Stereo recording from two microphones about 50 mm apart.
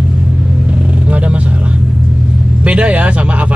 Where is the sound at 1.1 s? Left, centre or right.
Right.